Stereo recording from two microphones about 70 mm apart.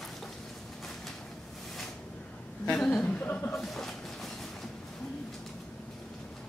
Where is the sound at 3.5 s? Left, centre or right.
Centre.